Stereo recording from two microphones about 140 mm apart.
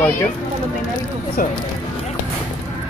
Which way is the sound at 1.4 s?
90° left.